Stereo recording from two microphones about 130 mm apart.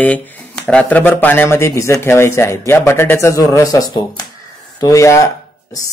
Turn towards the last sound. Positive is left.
turn(degrees=25)  # may be behind; listen again after turning